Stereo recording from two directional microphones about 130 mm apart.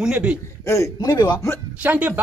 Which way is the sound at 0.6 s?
20° left (ahead or behind).